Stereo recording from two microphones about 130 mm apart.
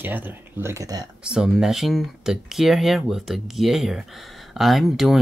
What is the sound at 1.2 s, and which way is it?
Speech, 5° right (ahead or behind).